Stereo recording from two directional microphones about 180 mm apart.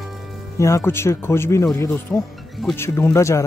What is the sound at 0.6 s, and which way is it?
Speech, 15° left (ahead or behind).